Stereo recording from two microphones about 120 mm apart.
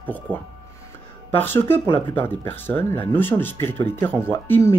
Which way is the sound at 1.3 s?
20° left (ahead or behind).